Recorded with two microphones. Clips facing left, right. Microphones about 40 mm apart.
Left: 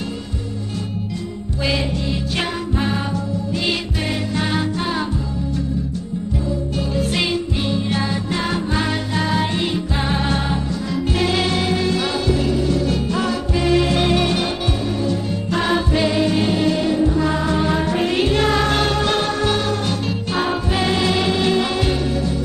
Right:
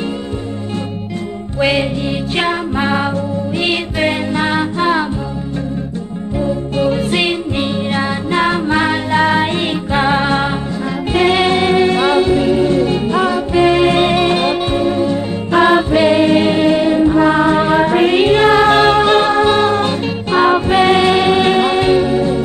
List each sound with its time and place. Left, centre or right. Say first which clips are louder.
1.6 s music: right 7 dB; right
6.8 s music: right 7 dB; right